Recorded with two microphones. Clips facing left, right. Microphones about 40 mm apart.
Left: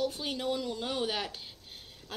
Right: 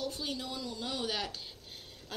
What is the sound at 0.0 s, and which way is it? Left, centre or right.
Speech, left.